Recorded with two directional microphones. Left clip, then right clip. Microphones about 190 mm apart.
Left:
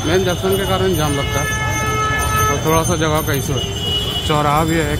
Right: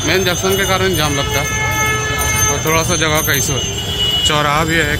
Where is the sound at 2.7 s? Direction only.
15° left (ahead or behind).